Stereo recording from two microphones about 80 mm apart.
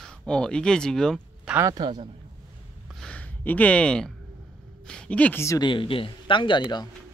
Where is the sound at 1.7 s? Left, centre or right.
Right.